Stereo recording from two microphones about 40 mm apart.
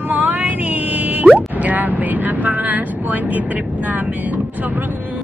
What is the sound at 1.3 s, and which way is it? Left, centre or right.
Vehicle, right.